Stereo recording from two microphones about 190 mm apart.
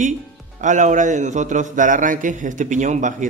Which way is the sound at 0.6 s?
40° right (ahead or behind).